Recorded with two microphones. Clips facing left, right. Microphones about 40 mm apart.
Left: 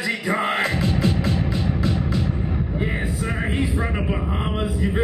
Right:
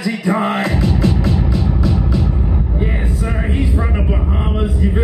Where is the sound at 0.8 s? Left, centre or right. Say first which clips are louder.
Right 5 dB; left.